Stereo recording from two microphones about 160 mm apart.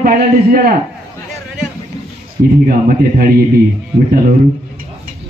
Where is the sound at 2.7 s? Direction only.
65° right (ahead or behind).